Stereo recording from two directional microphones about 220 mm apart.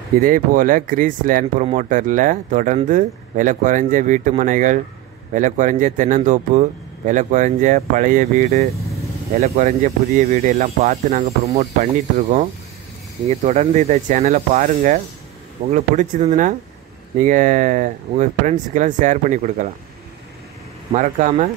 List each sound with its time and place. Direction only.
0.2 s speech: 40° right (ahead or behind)
20.9 s speech: 30° right (ahead or behind)